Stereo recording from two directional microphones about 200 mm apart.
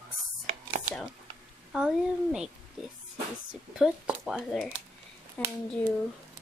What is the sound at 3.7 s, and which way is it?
Speech, 5° right (ahead or behind).